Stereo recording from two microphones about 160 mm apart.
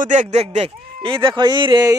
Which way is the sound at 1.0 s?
30° right (ahead or behind).